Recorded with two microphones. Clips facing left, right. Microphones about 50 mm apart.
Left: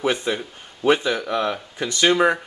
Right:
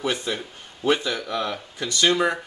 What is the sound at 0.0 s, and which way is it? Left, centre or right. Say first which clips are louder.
Speech: left 4 dB; left.